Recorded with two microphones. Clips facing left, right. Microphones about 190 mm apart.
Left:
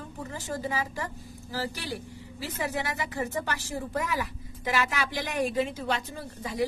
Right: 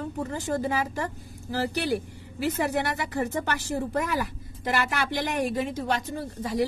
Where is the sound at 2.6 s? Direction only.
60° right (ahead or behind).